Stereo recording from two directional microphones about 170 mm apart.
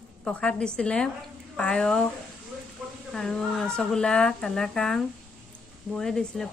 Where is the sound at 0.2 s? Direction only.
5° left (ahead or behind).